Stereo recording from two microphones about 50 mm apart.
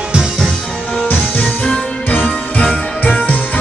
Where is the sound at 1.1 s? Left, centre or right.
Left.